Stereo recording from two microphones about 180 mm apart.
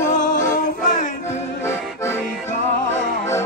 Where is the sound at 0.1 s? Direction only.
45° left (ahead or behind).